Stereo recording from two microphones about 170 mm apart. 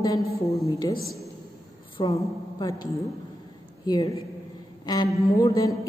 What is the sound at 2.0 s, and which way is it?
Speech, 30° left (ahead or behind).